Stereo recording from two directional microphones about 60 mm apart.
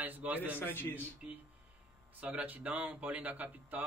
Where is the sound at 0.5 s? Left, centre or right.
Left.